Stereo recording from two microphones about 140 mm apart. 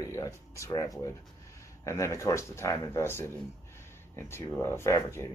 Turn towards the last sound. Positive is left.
turn(degrees=20)  # may be behind; listen again after turning